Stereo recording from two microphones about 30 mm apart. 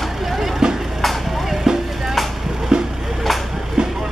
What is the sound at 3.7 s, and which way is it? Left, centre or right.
Train, centre.